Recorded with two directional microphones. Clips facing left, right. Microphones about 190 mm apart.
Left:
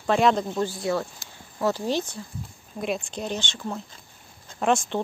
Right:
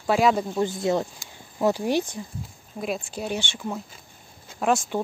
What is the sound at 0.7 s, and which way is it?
Speech, 20° right (ahead or behind).